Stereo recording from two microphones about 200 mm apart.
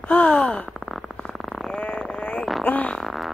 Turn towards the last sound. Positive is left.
turn(degrees=0)  # may be behind; listen again after turning